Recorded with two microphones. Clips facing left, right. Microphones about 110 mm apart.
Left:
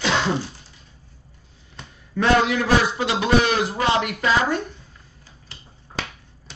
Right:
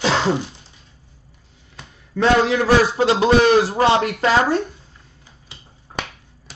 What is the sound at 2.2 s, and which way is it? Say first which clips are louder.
A man's voice: right 3 dB; 30° right (ahead or behind).